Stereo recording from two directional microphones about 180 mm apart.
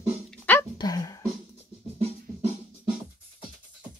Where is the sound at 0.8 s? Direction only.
20° left (ahead or behind).